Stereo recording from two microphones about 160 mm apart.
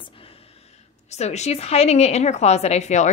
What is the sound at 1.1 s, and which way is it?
A woman's voice, 45° left (ahead or behind).